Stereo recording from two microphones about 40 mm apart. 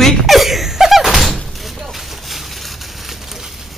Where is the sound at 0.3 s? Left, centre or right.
Centre.